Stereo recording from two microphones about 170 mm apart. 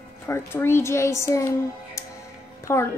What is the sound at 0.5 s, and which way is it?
Speech, 15° left (ahead or behind).